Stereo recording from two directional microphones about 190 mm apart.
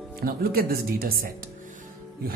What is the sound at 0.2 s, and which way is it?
Speech, 50° right (ahead or behind).